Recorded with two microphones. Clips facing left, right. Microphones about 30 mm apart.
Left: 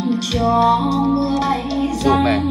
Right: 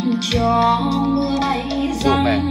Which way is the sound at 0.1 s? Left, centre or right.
Centre.